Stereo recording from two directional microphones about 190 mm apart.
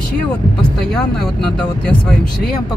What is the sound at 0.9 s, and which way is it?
Speech, 5° left (ahead or behind).